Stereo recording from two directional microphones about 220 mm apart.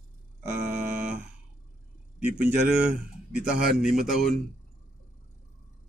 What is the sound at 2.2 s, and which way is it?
Speech, 5° right (ahead or behind).